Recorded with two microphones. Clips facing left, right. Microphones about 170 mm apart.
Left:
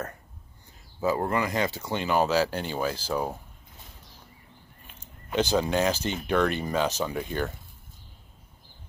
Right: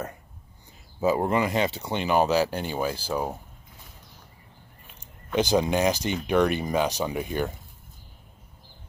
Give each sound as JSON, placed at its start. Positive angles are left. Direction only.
{"t": 1.0, "sound": "speech", "side_deg": -20}
{"t": 5.0, "sound": "speech", "side_deg": -15}